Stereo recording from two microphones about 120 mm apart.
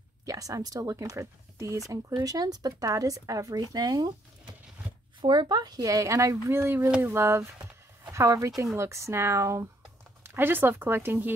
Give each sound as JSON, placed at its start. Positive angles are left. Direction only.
{"t": 0.2, "sound": "speech", "side_deg": -30}
{"t": 5.2, "sound": "speech", "side_deg": -40}